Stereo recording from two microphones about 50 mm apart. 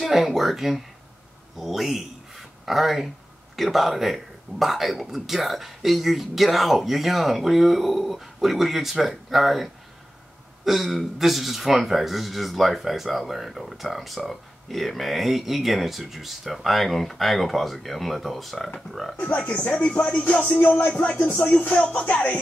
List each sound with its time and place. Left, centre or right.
0.0 s speech: centre
19.1 s speech: left
21.6 s speech: left